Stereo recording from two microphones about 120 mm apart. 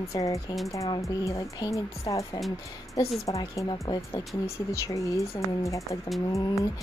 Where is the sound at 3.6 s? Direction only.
35° left (ahead or behind).